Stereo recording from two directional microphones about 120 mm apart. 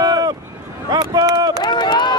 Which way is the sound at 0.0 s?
35° right (ahead or behind).